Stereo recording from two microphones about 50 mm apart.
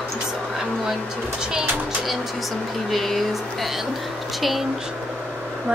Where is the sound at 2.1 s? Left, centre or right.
Centre.